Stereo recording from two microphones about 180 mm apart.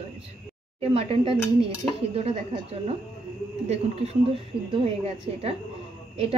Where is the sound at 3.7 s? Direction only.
35° right (ahead or behind).